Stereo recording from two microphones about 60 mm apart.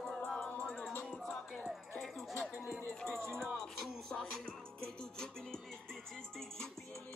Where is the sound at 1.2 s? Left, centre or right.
Centre.